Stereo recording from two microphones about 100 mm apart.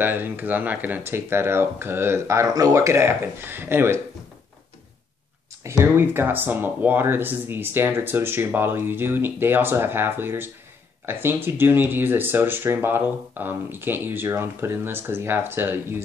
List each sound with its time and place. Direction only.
0.0 s speech: 20° right (ahead or behind)
5.6 s speech: 30° right (ahead or behind)